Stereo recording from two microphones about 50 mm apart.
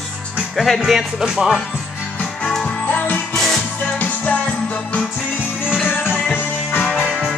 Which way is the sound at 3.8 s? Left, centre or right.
Left.